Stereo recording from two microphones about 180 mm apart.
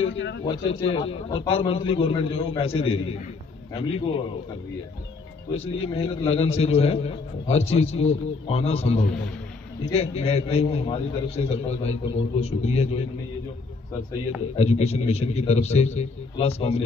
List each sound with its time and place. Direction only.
0.0 s a man's voice: 90° left
0.5 s a man's voice: 30° left (ahead or behind)
5.5 s a man's voice: 30° left (ahead or behind)
14.5 s a man's voice: 35° left (ahead or behind)